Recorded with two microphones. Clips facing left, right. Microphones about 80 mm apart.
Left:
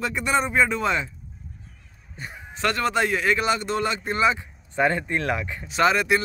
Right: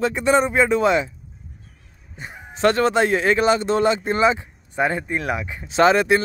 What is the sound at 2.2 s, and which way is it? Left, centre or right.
Speech, centre.